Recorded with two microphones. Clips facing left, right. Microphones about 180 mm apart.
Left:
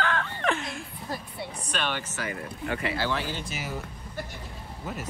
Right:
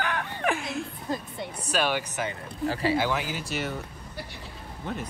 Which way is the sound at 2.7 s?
30° right (ahead or behind).